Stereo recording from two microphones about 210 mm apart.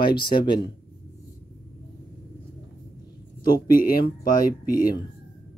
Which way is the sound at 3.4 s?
40° left (ahead or behind).